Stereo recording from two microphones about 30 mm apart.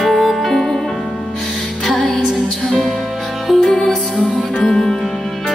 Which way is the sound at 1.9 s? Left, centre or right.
Centre.